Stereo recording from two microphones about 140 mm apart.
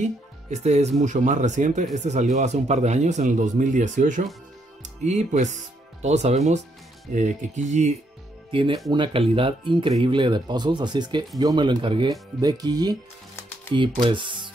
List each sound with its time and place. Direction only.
0.0 s speech: 55° right (ahead or behind)
8.5 s speech: 35° right (ahead or behind)